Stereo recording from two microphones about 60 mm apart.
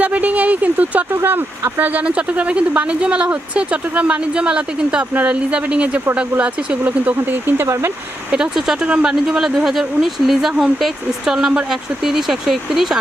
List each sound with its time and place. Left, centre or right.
0.0 s speech: right
1.1 s speech: right
7.6 s speech: right
8.8 s speech: centre